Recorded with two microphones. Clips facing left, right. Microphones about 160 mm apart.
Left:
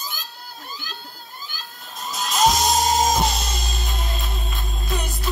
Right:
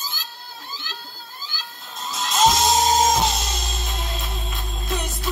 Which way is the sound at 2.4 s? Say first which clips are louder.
Right 1 dB; centre (ahead or behind).